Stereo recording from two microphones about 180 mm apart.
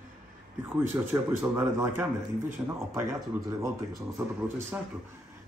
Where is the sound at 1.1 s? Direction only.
10° right (ahead or behind).